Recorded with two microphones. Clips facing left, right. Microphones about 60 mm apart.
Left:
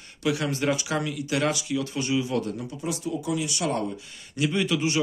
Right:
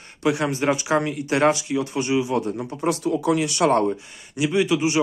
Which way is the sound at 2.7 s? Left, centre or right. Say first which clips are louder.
Right 10 dB; right.